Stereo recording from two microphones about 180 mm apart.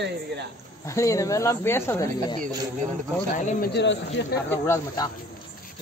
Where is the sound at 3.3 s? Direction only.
65° left (ahead or behind).